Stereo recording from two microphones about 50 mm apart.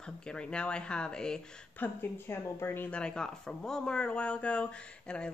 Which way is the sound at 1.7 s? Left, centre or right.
Left.